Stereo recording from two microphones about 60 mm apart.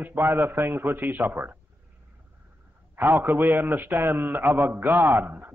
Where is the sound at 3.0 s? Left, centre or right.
Right.